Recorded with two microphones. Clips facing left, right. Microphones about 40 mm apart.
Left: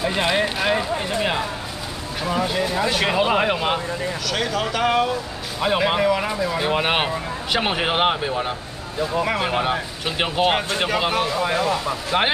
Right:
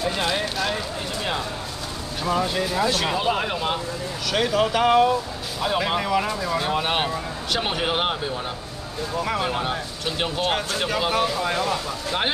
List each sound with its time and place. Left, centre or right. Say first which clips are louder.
0.0 s speech: left 4 dB; left
2.2 s speech: left 1 dB; centre
4.3 s speech: right 4 dB; centre
5.6 s speech: left 4 dB; centre
6.7 s speech: left 3 dB; left